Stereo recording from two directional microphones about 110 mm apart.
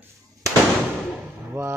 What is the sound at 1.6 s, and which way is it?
Speech, 30° right (ahead or behind).